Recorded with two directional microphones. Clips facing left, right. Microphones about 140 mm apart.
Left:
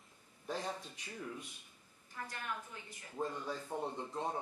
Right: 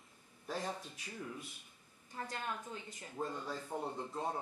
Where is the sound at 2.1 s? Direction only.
25° right (ahead or behind).